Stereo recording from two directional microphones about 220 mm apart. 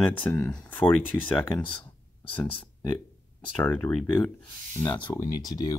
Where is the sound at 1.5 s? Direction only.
5° left (ahead or behind).